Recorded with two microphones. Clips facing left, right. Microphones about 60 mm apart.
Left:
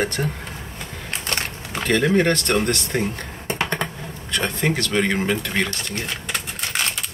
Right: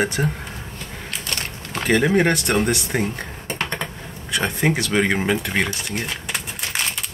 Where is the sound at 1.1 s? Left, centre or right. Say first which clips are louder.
Left 3 dB; left.